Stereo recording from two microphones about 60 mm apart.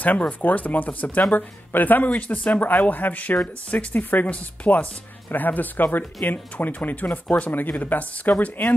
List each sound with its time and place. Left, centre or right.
0.0 s speech: left